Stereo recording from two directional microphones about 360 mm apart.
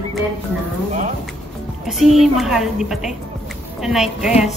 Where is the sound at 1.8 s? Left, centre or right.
Centre.